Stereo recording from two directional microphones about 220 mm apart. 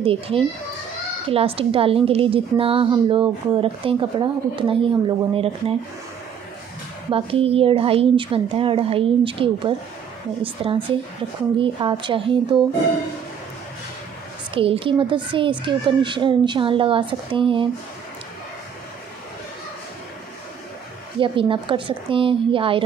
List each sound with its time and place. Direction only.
0.0 s a woman's voice: 25° right (ahead or behind)
7.1 s a woman's voice: 25° right (ahead or behind)
14.5 s a woman's voice: 25° right (ahead or behind)
21.2 s a woman's voice: 25° right (ahead or behind)